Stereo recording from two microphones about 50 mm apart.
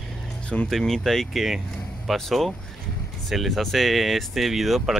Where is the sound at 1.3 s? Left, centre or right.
Centre.